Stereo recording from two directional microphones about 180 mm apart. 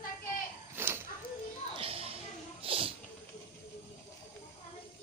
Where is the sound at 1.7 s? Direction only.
30° right (ahead or behind).